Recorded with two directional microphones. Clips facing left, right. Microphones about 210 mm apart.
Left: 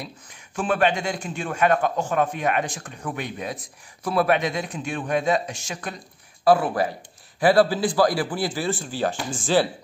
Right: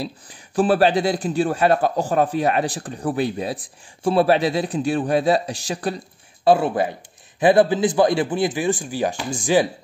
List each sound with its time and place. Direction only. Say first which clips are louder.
0.0 s a man's voice: right 8 dB; 35° right (ahead or behind); by 9.7 s 15° right (ahead or behind)